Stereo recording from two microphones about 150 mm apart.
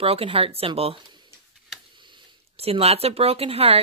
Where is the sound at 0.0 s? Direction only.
40° right (ahead or behind).